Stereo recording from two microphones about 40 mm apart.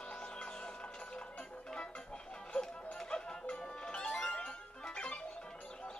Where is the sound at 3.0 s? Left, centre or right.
Left.